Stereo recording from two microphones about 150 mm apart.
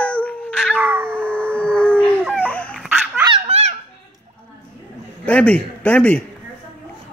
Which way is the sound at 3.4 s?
45° right (ahead or behind).